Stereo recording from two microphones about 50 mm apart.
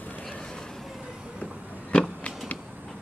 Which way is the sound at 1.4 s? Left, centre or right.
Left.